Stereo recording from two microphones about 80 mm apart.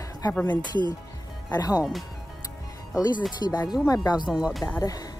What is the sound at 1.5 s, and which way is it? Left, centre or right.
Speech, left.